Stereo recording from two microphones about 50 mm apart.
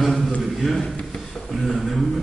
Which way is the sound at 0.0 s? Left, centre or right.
Centre.